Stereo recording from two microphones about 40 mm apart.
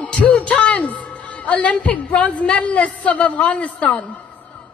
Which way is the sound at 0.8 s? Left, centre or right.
Left.